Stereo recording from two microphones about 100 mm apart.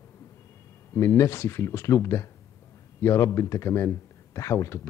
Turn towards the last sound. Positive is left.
turn(degrees=30)  # may be behind; listen again after turning